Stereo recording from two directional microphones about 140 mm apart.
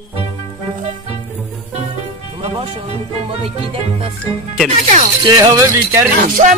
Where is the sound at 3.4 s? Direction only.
45° right (ahead or behind).